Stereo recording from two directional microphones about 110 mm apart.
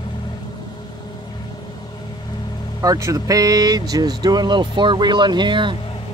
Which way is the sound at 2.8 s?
30° right (ahead or behind).